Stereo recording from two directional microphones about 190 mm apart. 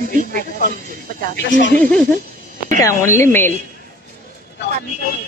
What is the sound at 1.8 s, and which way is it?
Speech, 10° left (ahead or behind).